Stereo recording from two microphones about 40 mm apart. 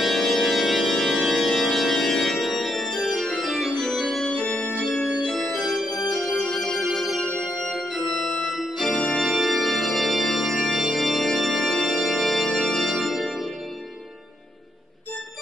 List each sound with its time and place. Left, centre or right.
0.0 s organ: centre
4.3 s organ: left
5.2 s organ: centre
5.6 s organ: centre
6.5 s organ: centre
6.9 s organ: centre
8.9 s organ: centre
9.2 s organ: centre